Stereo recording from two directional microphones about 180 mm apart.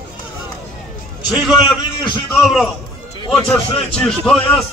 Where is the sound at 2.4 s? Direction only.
Centre (ahead or behind).